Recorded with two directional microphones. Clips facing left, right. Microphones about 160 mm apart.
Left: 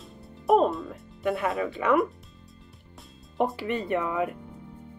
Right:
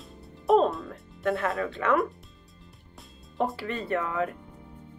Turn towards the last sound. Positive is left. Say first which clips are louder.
# left 1 dB
turn(degrees=15)  # may be behind; listen again after turning